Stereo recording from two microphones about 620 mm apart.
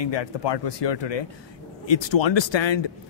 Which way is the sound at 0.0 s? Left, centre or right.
Left.